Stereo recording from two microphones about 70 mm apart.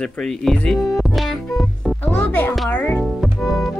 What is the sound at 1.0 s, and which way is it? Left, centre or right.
Music, centre.